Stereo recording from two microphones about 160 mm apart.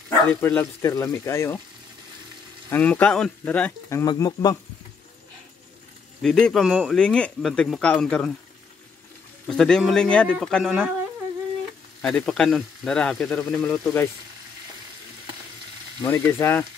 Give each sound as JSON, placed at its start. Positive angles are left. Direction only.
{"t": 0.3, "sound": "speech", "side_deg": 10}
{"t": 2.7, "sound": "speech", "side_deg": 10}
{"t": 3.9, "sound": "speech", "side_deg": 25}
{"t": 6.2, "sound": "speech", "side_deg": 5}
{"t": 9.5, "sound": "speech", "side_deg": 5}
{"t": 12.0, "sound": "speech", "side_deg": 5}
{"t": 16.0, "sound": "speech", "side_deg": 15}